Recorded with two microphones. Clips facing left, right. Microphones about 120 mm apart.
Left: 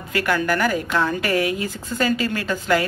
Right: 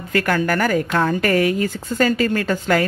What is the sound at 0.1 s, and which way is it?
A woman's voice, 45° right (ahead or behind).